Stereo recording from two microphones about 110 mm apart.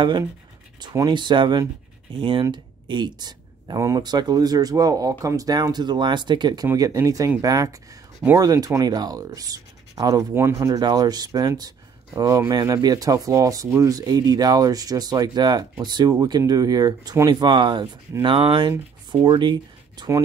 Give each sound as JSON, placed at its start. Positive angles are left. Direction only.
{"t": 0.9, "sound": "speech", "side_deg": -40}
{"t": 6.7, "sound": "speech", "side_deg": -30}
{"t": 10.3, "sound": "speech", "side_deg": -25}
{"t": 10.8, "sound": "speech", "side_deg": -40}